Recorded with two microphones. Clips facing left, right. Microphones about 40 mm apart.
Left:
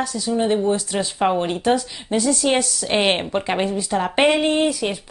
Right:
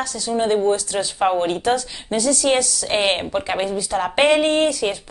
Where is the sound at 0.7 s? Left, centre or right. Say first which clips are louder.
Right 1 dB; left.